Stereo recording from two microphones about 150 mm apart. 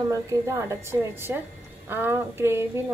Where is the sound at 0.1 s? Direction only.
20° right (ahead or behind).